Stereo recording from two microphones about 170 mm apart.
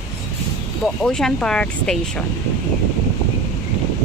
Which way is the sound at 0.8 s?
5° left (ahead or behind).